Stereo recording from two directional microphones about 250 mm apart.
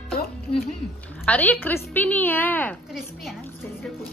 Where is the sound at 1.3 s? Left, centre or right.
Centre.